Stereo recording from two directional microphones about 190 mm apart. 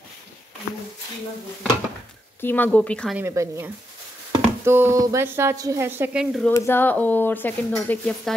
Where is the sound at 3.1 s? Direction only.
15° right (ahead or behind).